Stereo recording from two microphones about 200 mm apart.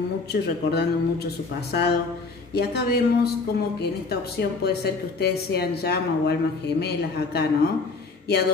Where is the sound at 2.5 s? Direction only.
55° left (ahead or behind).